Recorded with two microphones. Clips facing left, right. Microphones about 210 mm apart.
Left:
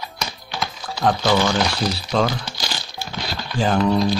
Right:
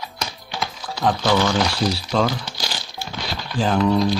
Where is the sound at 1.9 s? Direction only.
5° right (ahead or behind).